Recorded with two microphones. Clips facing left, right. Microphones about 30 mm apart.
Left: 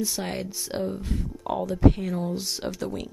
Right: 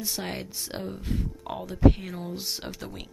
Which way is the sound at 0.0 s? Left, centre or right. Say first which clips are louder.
Left 4 dB; centre.